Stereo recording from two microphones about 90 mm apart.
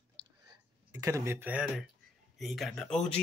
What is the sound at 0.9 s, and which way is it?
Speech, 40° right (ahead or behind).